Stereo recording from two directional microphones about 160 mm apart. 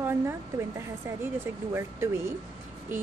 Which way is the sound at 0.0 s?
15° right (ahead or behind).